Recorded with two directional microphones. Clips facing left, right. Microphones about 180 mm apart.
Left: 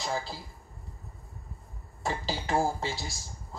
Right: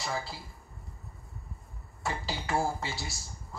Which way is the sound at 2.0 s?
20° left (ahead or behind).